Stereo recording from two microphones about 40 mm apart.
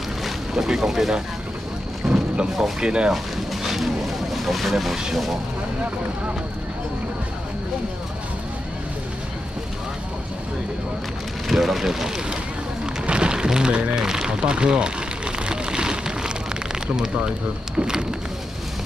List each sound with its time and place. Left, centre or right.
0.2 s boat: centre
2.0 s a sound: centre
2.8 s speech: right
3.6 s vehicle: centre
5.1 s speech: centre
11.4 s speech: centre
13.0 s rain: right
13.9 s speech: centre
14.4 s speech: right
15.3 s a sound: right
16.8 s speech: centre